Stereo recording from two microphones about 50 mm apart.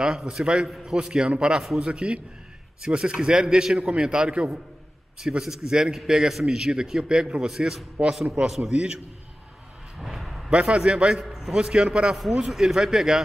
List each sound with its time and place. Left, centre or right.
0.0 s a man's voice: centre
8.6 s a man's voice: centre
9.9 s a sound: centre
10.5 s a man's voice: right